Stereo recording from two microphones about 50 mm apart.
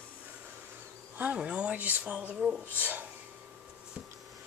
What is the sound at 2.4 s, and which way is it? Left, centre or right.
Speech, centre.